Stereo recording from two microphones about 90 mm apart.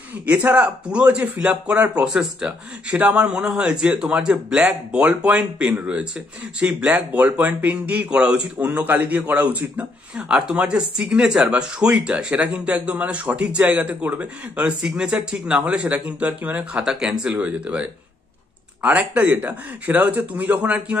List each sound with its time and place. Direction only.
0.3 s speech: 15° right (ahead or behind)